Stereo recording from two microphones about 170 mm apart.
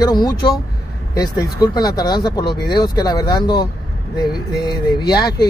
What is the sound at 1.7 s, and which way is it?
Speech, 20° left (ahead or behind).